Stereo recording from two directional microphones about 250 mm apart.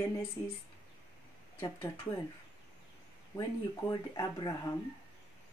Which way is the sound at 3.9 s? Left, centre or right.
Centre.